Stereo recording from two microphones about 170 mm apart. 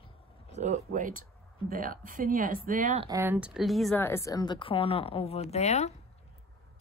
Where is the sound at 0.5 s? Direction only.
40° right (ahead or behind).